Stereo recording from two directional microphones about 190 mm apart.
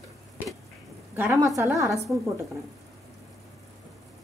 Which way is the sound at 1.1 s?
15° right (ahead or behind).